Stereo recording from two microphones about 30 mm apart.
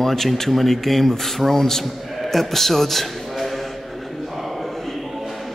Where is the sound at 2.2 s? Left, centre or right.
Centre.